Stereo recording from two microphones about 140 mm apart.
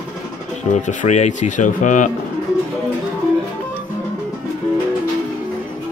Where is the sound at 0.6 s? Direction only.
55° left (ahead or behind).